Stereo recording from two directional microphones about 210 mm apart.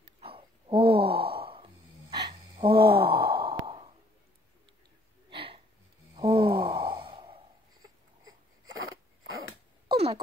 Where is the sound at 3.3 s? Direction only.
20° right (ahead or behind).